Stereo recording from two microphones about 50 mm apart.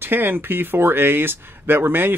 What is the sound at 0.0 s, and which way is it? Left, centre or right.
Speech, right.